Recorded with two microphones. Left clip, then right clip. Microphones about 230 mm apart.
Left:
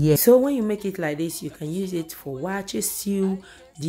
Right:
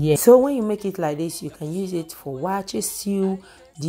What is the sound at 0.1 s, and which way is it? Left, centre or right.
A woman's voice, centre.